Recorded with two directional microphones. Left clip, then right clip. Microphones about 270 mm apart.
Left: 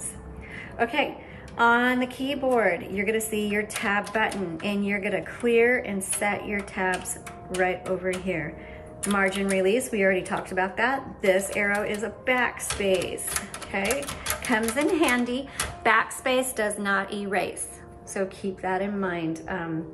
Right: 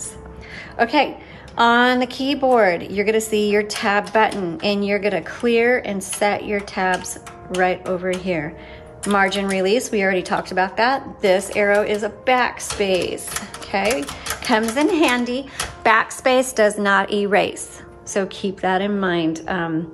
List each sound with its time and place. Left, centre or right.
0.7 s a woman's voice: centre